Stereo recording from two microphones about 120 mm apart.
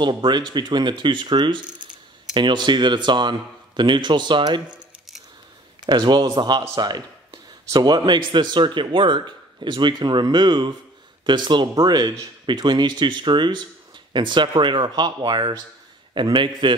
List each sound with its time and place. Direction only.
0.0 s a man's voice: 40° right (ahead or behind)
5.9 s a man's voice: 40° right (ahead or behind)